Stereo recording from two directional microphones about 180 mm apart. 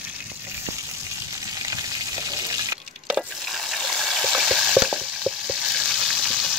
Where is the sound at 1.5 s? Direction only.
20° right (ahead or behind).